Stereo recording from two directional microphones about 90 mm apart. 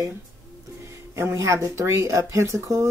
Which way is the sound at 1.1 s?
30° right (ahead or behind).